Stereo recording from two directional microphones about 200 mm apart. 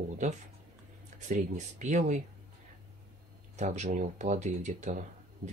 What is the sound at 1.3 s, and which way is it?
Speech, 35° right (ahead or behind).